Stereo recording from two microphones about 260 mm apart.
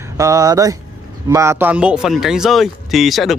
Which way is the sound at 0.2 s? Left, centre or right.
Centre.